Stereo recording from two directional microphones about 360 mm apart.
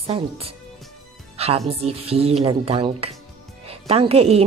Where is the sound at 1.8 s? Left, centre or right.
Centre.